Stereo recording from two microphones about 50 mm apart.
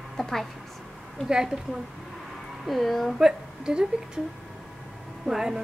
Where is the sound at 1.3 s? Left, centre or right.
Centre.